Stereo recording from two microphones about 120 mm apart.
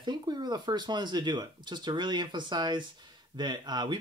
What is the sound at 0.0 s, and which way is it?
Speech, 35° right (ahead or behind).